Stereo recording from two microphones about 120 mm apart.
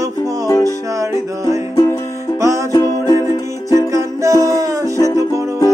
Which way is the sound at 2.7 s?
30° left (ahead or behind).